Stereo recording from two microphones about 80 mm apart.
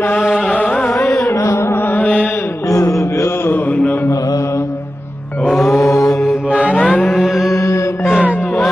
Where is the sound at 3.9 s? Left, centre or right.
Left.